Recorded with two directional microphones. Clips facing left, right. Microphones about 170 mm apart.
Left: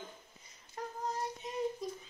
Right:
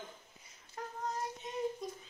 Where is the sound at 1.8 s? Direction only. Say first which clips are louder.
Left 2 dB; centre (ahead or behind).